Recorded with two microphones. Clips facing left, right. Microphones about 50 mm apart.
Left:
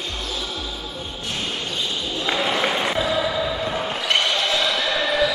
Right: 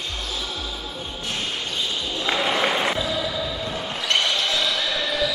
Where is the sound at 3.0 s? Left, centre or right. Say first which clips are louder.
Left 4 dB; left.